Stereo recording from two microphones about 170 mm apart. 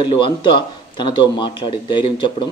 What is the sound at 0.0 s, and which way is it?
A man's voice, 30° left (ahead or behind).